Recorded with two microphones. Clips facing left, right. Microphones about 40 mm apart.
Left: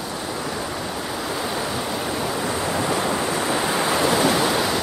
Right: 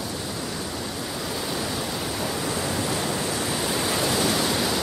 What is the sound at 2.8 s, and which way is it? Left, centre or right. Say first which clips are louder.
Waves: left 5 dB; left.